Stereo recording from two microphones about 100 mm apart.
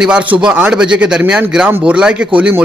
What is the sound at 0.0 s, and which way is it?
A man's voice, 10° right (ahead or behind).